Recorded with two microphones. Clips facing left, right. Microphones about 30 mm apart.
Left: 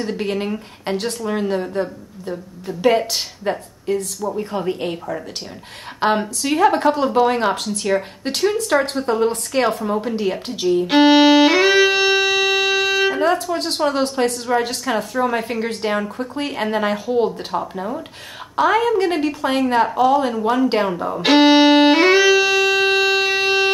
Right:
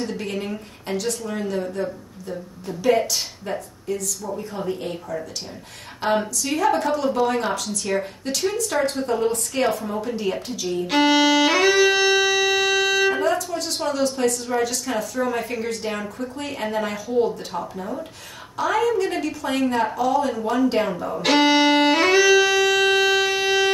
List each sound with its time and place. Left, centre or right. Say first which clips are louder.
0.2 s a woman's voice: left 5 dB; left
10.5 s a woman's voice: left 8 dB; left
10.8 s violin: left 5 dB; left
13.2 s a woman's voice: left 4 dB; left
20.3 s speech: left 4 dB; left
21.3 s music: left 5 dB; left